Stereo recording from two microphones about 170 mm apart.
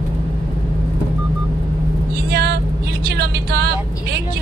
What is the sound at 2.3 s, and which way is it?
Vehicle, 70° right (ahead or behind).